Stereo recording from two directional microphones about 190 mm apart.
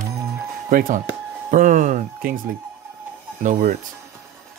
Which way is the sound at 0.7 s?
50° right (ahead or behind).